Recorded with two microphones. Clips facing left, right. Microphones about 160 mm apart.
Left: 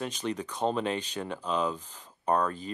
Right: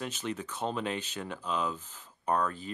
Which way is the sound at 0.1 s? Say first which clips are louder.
Left 3 dB; 15° left (ahead or behind).